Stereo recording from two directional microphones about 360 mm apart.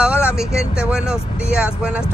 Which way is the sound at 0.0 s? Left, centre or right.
Centre.